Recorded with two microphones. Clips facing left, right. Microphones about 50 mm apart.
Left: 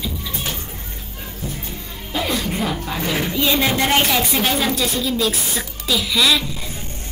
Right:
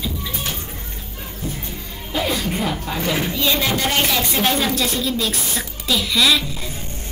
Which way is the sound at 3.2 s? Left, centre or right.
Centre.